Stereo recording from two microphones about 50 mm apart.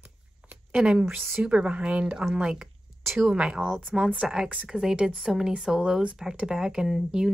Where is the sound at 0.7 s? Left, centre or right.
Centre.